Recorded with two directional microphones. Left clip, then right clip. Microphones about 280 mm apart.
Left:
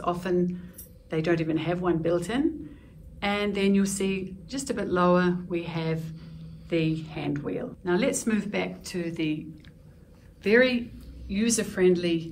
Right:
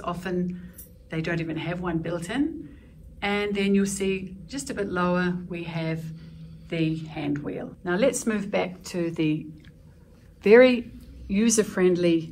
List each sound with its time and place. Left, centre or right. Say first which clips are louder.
0.0 s a woman's voice: left 3 dB; centre
10.4 s speech: right 6 dB; centre